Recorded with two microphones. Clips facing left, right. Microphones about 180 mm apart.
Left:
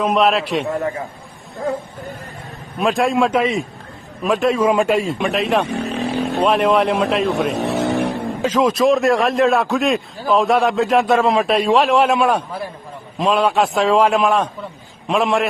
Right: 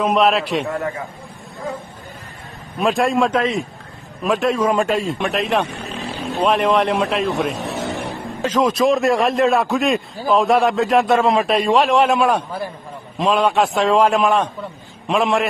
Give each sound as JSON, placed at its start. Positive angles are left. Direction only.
{"t": 0.0, "sound": "a man's voice", "side_deg": 0}
{"t": 0.7, "sound": "a man's voice", "side_deg": 20}
{"t": 2.8, "sound": "a man's voice", "side_deg": 0}
{"t": 5.9, "sound": "vehicle", "side_deg": 65}
{"t": 6.4, "sound": "a man's voice", "side_deg": 5}
{"t": 7.5, "sound": "vehicle", "side_deg": 70}
{"t": 8.4, "sound": "a man's voice", "side_deg": 5}